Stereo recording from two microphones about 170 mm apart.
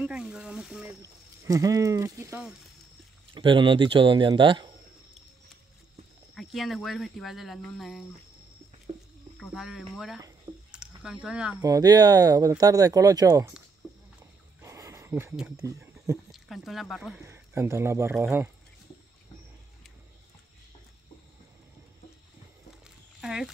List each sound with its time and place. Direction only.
0.0 s speech: 5° right (ahead or behind)
1.0 s speech: 20° right (ahead or behind)
3.3 s speech: 30° right (ahead or behind)
6.3 s speech: centre (ahead or behind)
9.4 s speech: centre (ahead or behind)
10.7 s a sound: 5° right (ahead or behind)
11.5 s speech: 20° right (ahead or behind)
14.6 s a sound: 20° right (ahead or behind)
15.3 s speech: 5° right (ahead or behind)
15.6 s a sound: 20° right (ahead or behind)
16.3 s speech: centre (ahead or behind)
17.2 s speech: 15° right (ahead or behind)
23.2 s speech: 5° right (ahead or behind)